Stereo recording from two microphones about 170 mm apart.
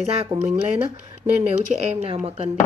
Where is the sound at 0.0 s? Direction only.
35° right (ahead or behind).